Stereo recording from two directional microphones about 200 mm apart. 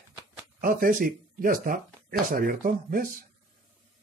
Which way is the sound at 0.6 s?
45° right (ahead or behind).